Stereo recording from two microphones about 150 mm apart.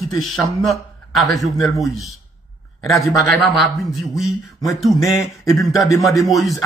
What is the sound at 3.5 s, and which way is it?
Speech, centre (ahead or behind).